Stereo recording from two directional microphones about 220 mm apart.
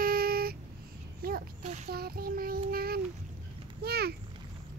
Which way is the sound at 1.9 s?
45° right (ahead or behind).